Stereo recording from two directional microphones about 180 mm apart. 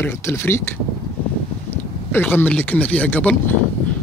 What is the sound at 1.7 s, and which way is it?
Speech, 10° left (ahead or behind).